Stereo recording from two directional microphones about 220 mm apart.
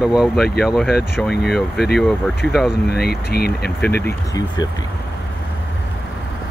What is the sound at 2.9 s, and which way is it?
Speech, 45° left (ahead or behind).